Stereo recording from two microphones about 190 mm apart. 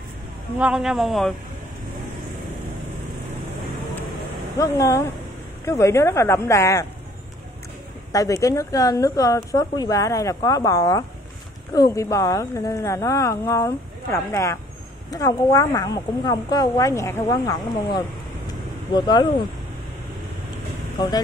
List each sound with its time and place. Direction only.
0.6 s speech: 5° right (ahead or behind)
4.6 s a woman's voice: 15° left (ahead or behind)
8.1 s a woman's voice: 15° left (ahead or behind)